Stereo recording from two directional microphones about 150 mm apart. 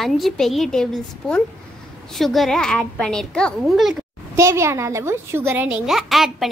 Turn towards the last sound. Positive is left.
turn(degrees=0)  # may be behind; listen again after turning